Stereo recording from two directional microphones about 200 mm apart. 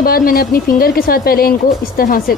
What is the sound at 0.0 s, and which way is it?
A woman's voice, 45° left (ahead or behind).